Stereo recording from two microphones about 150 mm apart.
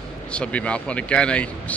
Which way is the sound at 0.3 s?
10° left (ahead or behind).